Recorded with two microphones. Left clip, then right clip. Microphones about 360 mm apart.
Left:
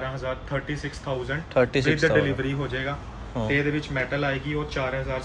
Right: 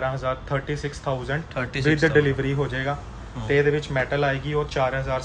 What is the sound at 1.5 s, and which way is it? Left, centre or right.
Speech, centre.